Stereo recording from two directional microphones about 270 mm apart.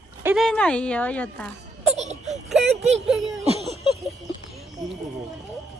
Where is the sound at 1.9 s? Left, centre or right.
Right.